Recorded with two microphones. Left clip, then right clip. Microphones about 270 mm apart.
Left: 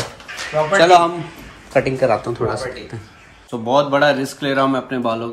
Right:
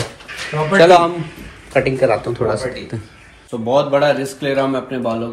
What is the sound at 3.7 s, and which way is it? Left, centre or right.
Speech, centre.